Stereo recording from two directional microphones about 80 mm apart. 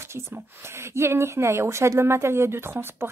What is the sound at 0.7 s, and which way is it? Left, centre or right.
Speech, right.